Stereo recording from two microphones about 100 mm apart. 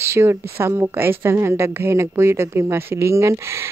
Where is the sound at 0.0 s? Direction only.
25° right (ahead or behind).